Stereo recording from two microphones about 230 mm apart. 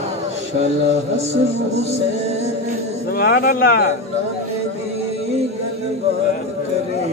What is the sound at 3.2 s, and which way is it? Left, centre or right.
Speech, left.